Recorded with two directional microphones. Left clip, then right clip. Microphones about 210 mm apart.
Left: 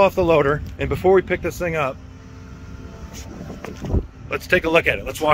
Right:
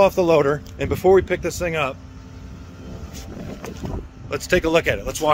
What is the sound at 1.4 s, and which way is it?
Speech, 20° left (ahead or behind).